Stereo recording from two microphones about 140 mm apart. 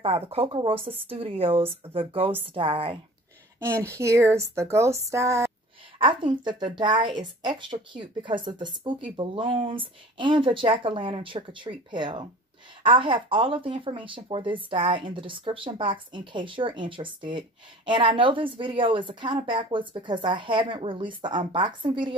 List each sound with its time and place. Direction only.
0.0 s speech: 45° right (ahead or behind)
3.5 s speech: 20° right (ahead or behind)
5.9 s speech: 35° right (ahead or behind)